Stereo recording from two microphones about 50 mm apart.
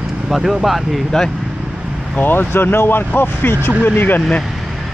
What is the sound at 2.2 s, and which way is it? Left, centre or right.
Speech, left.